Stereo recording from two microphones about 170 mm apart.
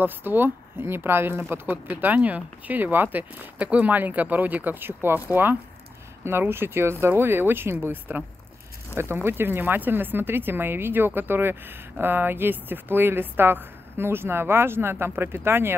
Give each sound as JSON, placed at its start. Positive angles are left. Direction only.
{"t": 0.0, "sound": "speech", "side_deg": -10}